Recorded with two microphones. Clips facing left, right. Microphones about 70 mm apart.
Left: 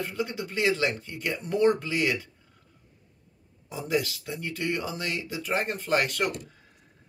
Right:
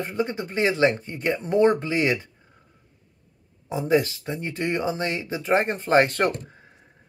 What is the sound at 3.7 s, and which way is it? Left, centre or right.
Speech, right.